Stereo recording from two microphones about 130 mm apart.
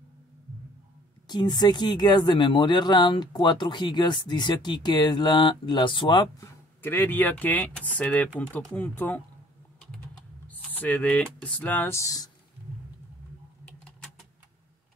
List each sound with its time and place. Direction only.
1.2 s speech: 35° left (ahead or behind)
6.4 s speech: 15° left (ahead or behind)
10.7 s speech: 15° left (ahead or behind)
13.7 s typing: 10° left (ahead or behind)